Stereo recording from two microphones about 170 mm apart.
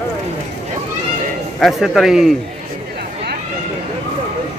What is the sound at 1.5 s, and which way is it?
Speech, centre (ahead or behind).